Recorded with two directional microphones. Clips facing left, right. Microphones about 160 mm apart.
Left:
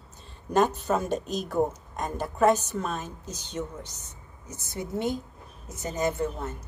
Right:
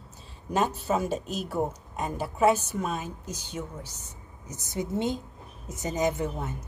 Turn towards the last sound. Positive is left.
turn(degrees=-15)  # may be behind; listen again after turning